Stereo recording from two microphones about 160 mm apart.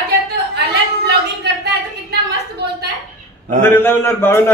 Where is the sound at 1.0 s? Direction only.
90° right.